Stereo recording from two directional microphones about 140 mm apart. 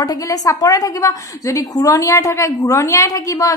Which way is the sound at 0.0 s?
25° left (ahead or behind).